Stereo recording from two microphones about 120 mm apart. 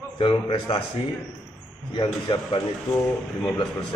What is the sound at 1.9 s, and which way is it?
Speech, 45° left (ahead or behind).